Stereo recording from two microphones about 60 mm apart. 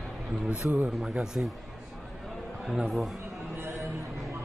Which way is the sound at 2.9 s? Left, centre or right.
Centre.